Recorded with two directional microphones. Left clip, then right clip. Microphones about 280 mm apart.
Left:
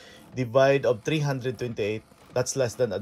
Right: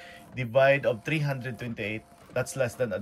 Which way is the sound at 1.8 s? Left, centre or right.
Left.